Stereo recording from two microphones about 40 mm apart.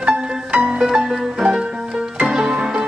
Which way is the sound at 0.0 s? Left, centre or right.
Right.